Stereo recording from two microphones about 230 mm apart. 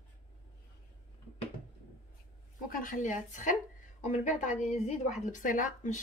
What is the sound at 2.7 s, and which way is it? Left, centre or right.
Speech, left.